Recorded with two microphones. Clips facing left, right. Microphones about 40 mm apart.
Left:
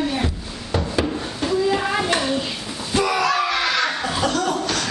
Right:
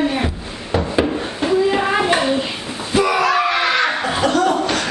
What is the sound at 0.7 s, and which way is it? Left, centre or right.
Hands, right.